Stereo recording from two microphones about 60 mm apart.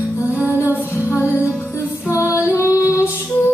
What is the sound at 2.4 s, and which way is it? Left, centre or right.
Female singing, left.